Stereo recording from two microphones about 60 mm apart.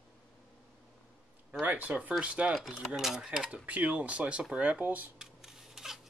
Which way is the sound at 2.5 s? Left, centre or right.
Centre.